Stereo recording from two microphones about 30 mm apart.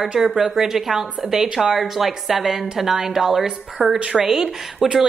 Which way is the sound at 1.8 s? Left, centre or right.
Centre.